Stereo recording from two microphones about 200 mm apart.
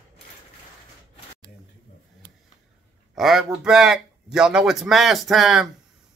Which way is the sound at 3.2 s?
Centre (ahead or behind).